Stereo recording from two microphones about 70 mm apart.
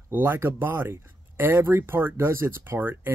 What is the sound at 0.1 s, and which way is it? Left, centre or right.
Speech, right.